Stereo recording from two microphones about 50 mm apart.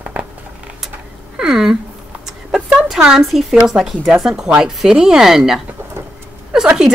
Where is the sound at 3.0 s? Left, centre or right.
Centre.